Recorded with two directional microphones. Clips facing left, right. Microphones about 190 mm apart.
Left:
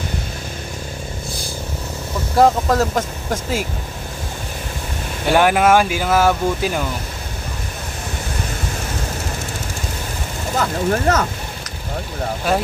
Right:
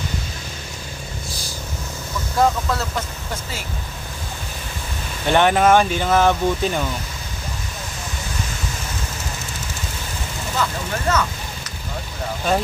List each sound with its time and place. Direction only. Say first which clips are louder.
2.3 s speech: left 5 dB; 40° left (ahead or behind)
5.2 s speech: left 1 dB; 5° left (ahead or behind)
10.6 s speech: left 6 dB; 45° left (ahead or behind)